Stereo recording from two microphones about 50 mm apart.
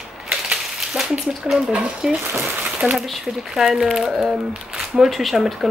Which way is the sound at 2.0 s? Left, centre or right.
Centre.